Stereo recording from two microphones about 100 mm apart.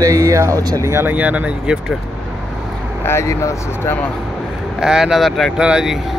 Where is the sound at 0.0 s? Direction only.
30° right (ahead or behind).